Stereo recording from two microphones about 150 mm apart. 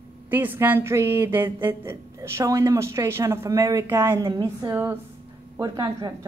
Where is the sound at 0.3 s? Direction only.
10° right (ahead or behind).